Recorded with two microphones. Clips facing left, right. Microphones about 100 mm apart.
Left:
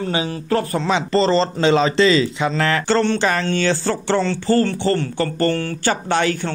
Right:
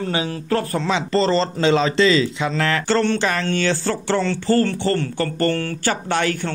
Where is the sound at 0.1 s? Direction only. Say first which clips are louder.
Left 2 dB; 20° left (ahead or behind).